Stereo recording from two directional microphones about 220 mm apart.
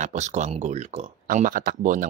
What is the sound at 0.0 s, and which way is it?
Speech, 30° right (ahead or behind).